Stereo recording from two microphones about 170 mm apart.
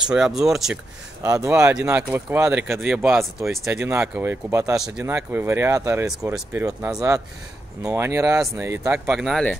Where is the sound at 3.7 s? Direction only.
15° right (ahead or behind).